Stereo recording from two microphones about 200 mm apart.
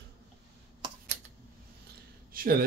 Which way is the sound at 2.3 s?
45° right (ahead or behind).